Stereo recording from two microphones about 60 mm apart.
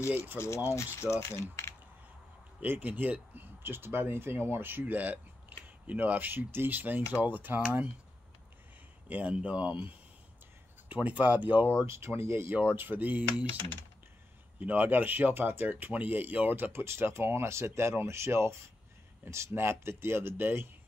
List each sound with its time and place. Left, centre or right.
0.7 s a sound: left
2.6 s speech: right
9.1 s speech: right
11.8 s speech: right
14.6 s speech: right